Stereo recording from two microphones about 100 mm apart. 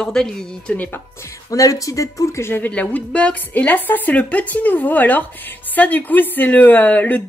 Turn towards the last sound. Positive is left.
turn(degrees=15)  # may be behind; listen again after turning